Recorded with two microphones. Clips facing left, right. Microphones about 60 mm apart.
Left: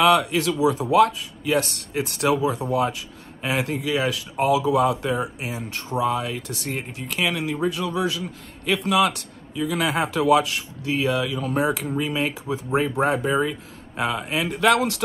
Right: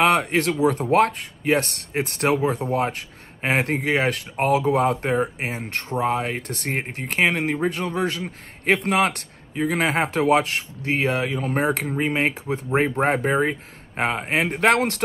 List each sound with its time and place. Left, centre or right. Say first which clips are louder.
0.0 s a man's voice: left 1 dB; right